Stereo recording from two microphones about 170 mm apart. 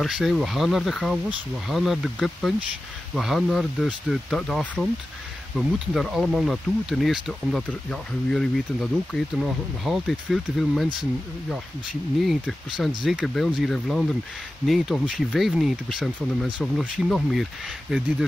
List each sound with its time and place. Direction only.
0.0 s speech: centre (ahead or behind)
12.2 s speech: centre (ahead or behind)